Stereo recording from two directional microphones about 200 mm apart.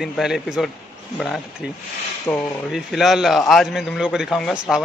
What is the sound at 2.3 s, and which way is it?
Speech, 10° left (ahead or behind).